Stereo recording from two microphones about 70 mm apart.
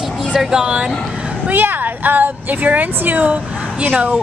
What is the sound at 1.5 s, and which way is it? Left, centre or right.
A woman's voice, right.